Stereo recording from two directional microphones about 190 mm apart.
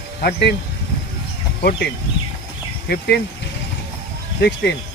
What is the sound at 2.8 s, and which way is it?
Speech, 60° left (ahead or behind).